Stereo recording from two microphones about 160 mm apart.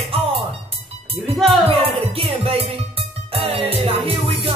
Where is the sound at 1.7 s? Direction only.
35° right (ahead or behind).